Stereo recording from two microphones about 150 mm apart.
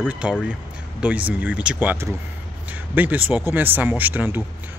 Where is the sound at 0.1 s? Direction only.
5° right (ahead or behind).